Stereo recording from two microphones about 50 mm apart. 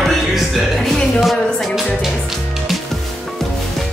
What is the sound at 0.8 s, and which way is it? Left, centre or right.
Music, centre.